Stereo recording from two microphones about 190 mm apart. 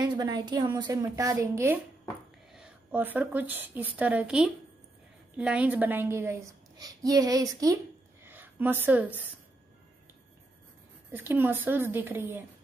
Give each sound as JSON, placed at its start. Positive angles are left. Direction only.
{"t": 0.0, "sound": "a woman's voice", "side_deg": -20}
{"t": 11.1, "sound": "a woman's voice", "side_deg": -10}